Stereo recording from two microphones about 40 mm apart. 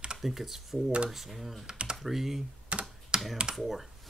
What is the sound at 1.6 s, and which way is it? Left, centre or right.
Typing, right.